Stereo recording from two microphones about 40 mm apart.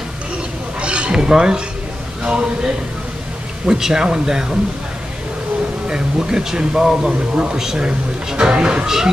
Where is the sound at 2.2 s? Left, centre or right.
Right.